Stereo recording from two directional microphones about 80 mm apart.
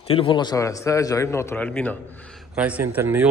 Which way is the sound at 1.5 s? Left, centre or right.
Centre.